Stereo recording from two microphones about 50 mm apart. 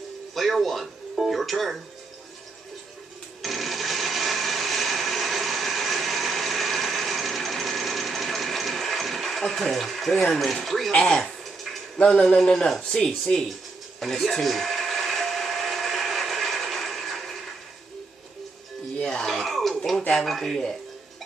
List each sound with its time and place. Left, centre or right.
0.3 s speech: centre
3.4 s blender: centre
10.2 s speech: centre
10.9 s speech: centre
13.9 s blender: centre
19.0 s a sound: centre
20.2 s speech: centre